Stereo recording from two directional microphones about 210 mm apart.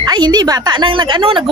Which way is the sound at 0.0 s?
20° right (ahead or behind).